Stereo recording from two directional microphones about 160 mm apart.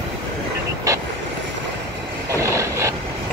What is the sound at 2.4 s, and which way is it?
Vehicle, 20° right (ahead or behind).